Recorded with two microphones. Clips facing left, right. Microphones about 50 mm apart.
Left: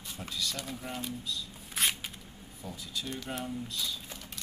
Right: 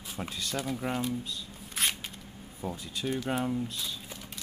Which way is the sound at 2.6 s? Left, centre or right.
Right.